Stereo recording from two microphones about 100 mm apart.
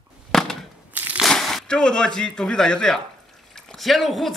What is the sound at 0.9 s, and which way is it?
Crushing, 15° right (ahead or behind).